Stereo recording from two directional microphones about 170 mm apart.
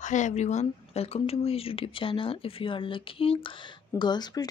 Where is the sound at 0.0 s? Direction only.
45° left (ahead or behind).